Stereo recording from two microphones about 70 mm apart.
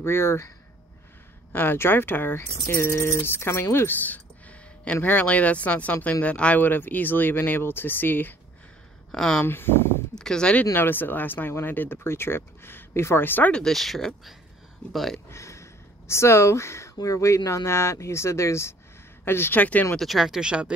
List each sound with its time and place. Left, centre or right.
0.0 s speech: left
1.5 s speech: left
3.7 s a sound: left
4.9 s speech: left
9.1 s speech: centre
9.4 s speech: left
10.1 s speech: centre
10.7 s speech: left
13.5 s speech: centre
15.2 s speech: left
19.6 s speech: left
20.0 s speech: centre